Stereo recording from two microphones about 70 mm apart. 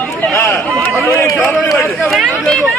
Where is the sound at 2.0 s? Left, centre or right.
Centre.